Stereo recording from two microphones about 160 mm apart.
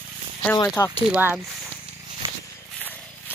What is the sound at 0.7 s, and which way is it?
Speech, 15° left (ahead or behind).